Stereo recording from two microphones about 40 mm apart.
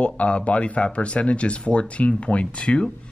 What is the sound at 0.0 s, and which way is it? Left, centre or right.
Speech, left.